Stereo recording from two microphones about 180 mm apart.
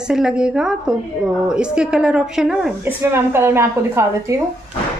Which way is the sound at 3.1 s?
15° right (ahead or behind).